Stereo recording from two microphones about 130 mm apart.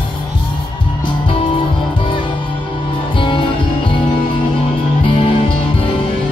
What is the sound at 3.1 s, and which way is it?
Music, 40° left (ahead or behind).